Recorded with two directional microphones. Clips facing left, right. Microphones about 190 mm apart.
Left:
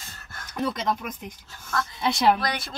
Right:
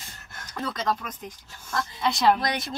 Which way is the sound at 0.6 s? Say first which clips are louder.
Left 2 dB; 20° left (ahead or behind).